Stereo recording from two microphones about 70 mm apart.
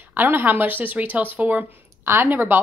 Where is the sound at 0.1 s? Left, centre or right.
Right.